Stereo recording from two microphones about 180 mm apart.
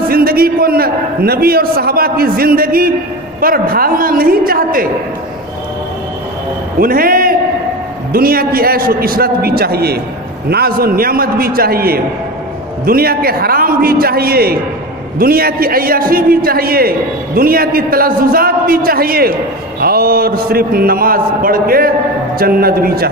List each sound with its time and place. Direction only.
0.1 s a man's voice: 55° right (ahead or behind)
6.8 s a man's voice: 55° right (ahead or behind)